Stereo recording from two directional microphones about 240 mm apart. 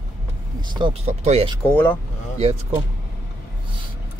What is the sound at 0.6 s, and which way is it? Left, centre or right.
Speech, centre.